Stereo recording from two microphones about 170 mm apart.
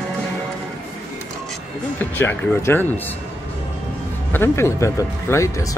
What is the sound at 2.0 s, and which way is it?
Speech, 10° left (ahead or behind).